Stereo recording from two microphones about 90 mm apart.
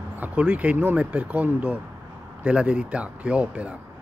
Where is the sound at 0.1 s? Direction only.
15° right (ahead or behind).